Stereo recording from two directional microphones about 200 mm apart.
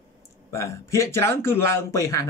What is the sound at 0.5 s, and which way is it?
Speech, 15° left (ahead or behind).